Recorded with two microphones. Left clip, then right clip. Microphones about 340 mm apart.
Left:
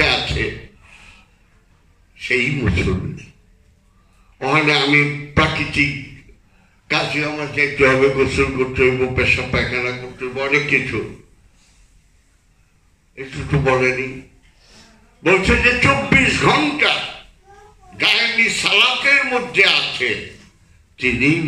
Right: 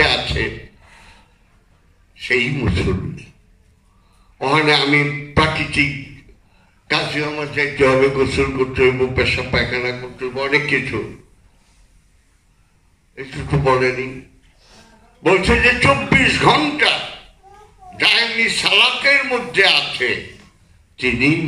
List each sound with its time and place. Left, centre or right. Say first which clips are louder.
0.0 s a sound: right 1 dB; right
2.1 s a man's voice: even; right
4.4 s a man's voice: right 1 dB; right
6.9 s a man's voice: even; right
13.1 s a man's voice: even; right
15.2 s a man's voice: right 1 dB; right
17.9 s a man's voice: even; right